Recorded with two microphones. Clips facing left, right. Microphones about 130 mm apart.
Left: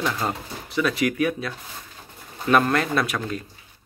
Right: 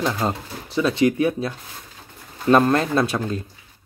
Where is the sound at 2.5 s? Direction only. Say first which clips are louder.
Right 3 dB; 25° right (ahead or behind).